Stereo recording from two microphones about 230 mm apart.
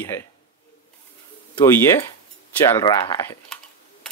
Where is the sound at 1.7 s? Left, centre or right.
Centre.